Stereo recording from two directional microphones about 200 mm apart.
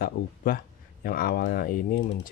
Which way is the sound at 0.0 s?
45° left (ahead or behind).